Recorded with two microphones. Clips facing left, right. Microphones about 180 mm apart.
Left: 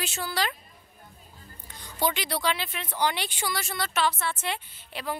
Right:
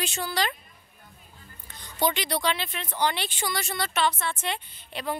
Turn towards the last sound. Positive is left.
turn(degrees=5)  # may be behind; listen again after turning